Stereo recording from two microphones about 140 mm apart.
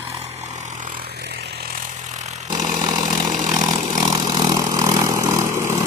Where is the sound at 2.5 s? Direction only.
30° right (ahead or behind).